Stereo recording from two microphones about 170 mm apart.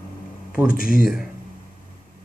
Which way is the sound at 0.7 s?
55° left (ahead or behind).